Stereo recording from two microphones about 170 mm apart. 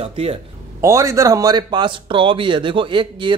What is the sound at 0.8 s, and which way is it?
Speech, 15° right (ahead or behind).